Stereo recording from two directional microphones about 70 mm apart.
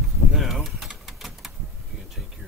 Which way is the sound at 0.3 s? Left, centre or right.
Centre.